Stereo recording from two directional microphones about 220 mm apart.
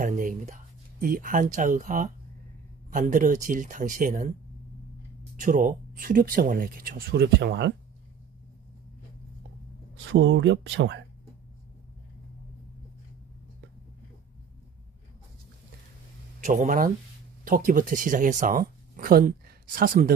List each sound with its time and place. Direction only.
0.0 s a sound: 35° right (ahead or behind)
1.0 s speech: 40° right (ahead or behind)
5.3 s speech: 35° right (ahead or behind)
10.0 s speech: 55° right (ahead or behind)
16.4 s speech: 35° right (ahead or behind)